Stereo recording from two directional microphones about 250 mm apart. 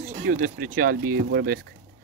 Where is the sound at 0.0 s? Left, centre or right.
Right.